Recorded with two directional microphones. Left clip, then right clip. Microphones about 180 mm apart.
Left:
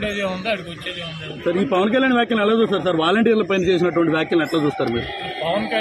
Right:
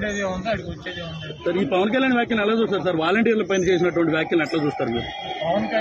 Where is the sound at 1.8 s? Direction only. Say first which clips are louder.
Left 3 dB; 30° left (ahead or behind).